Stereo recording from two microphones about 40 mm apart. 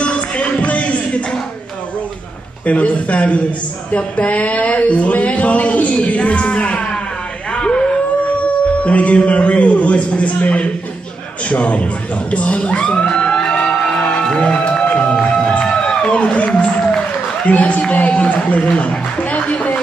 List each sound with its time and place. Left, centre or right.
0.0 s a sound: left
2.6 s speech: left
6.7 s music: left
7.5 s a sound: left
8.8 s speech: left; by 13.5 s centre
14.2 s music: left
15.6 s a sound: left
16.2 s music: left
17.5 s a man's voice: left